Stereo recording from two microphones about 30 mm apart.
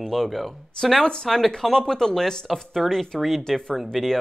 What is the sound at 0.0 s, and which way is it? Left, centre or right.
Speech, centre.